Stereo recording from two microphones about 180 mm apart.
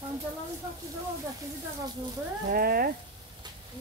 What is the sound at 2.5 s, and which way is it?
Speech, 55° right (ahead or behind).